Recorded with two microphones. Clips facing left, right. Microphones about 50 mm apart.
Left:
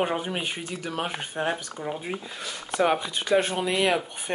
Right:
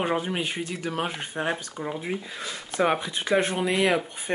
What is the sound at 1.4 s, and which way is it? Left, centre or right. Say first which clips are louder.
Speech: even; right.